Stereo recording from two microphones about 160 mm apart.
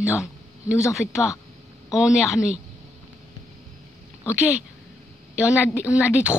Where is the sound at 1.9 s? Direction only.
5° right (ahead or behind).